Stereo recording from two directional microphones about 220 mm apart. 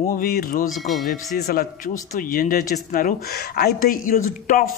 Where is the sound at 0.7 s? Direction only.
Centre (ahead or behind).